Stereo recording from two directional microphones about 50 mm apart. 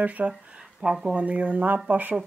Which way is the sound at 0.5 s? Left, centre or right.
Centre.